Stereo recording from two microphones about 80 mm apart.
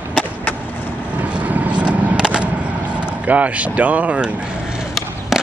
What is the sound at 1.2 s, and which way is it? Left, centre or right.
Vehicle, centre.